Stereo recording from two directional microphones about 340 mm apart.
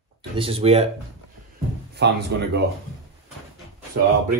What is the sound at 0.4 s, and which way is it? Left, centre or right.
Speech, centre.